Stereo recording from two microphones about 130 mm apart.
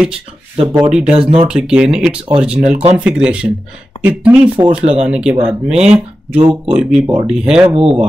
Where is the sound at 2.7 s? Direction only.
60° right (ahead or behind).